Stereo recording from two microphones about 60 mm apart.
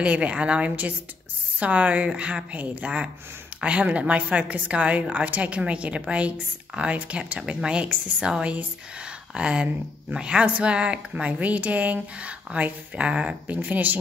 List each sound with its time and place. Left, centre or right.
0.0 s speech: right
13.6 s speech: right